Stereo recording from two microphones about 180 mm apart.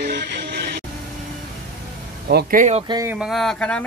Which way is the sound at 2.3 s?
55° right (ahead or behind).